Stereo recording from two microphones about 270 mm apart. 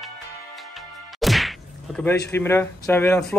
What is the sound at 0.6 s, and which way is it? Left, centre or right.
Whack, centre.